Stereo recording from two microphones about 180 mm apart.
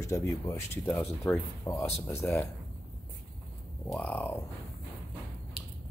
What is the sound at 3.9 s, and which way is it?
Speech, 10° left (ahead or behind).